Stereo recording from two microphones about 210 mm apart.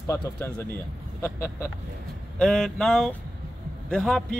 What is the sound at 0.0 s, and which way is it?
Speech, 10° left (ahead or behind).